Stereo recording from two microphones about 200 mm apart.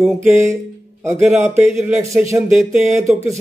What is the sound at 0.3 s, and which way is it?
Speech, 15° right (ahead or behind).